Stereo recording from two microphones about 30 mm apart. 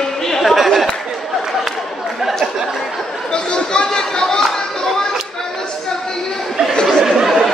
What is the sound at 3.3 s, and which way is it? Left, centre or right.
Chatter, left.